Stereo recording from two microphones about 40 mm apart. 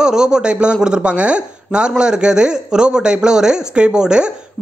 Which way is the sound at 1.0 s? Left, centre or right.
Right.